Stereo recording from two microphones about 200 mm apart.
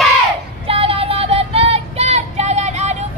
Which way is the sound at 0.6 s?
30° right (ahead or behind).